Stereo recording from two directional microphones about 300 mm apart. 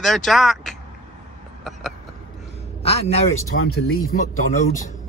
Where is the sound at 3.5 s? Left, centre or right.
Left.